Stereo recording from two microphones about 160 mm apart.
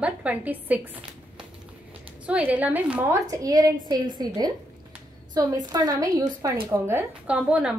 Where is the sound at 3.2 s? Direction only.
20° right (ahead or behind).